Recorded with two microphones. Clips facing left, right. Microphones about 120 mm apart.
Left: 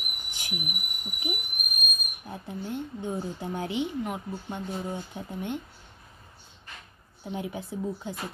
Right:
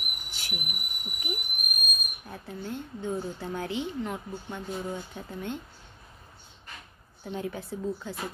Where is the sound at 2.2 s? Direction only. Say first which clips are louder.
Left 3 dB; 15° left (ahead or behind).